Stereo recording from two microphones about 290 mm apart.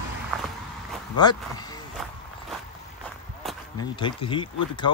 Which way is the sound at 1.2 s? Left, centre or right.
Centre.